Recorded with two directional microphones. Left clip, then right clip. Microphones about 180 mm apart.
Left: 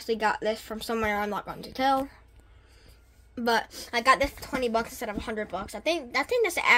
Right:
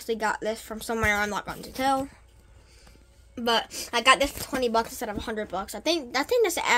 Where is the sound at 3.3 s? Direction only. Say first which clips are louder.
Right 1 dB; 5° left (ahead or behind).